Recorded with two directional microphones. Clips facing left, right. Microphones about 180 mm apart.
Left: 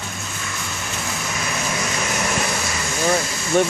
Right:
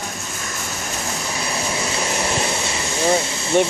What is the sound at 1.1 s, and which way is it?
Vehicle, 30° right (ahead or behind).